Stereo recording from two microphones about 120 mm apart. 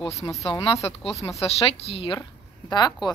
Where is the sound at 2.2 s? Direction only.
35° left (ahead or behind).